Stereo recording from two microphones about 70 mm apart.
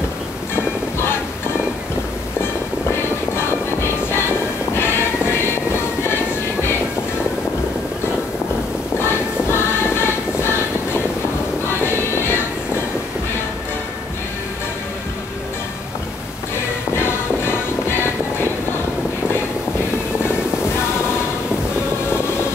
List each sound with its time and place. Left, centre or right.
0.6 s music: left
4.7 s music: left
9.0 s music: left
16.9 s music: left